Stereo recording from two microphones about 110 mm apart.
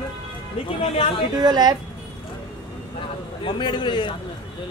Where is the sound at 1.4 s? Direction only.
40° right (ahead or behind).